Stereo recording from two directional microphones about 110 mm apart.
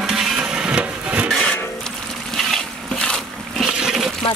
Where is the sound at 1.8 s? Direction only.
5° left (ahead or behind).